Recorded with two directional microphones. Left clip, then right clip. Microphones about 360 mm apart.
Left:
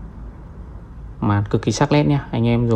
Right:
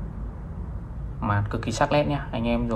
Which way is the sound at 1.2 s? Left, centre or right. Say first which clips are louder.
Left 7 dB; left.